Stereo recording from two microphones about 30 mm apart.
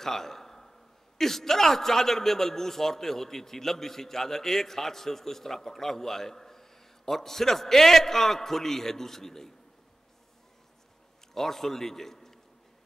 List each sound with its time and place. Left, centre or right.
0.0 s a man's voice: centre
11.3 s a man's voice: centre